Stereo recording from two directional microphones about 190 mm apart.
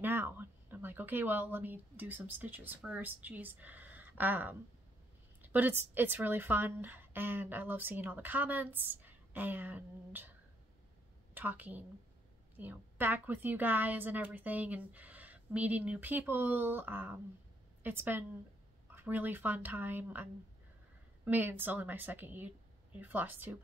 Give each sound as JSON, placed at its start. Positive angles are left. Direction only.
{"t": 0.0, "sound": "a woman's voice", "side_deg": -10}
{"t": 11.3, "sound": "a woman's voice", "side_deg": -10}
{"t": 21.3, "sound": "a woman's voice", "side_deg": -10}